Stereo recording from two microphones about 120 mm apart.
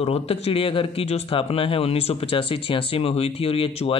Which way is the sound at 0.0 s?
55° left (ahead or behind).